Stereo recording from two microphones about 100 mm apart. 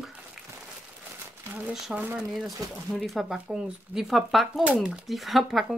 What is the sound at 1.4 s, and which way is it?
Speech, 20° right (ahead or behind).